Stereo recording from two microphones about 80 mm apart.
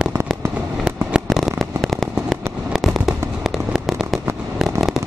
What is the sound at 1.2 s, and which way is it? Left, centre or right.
Fireworks, centre.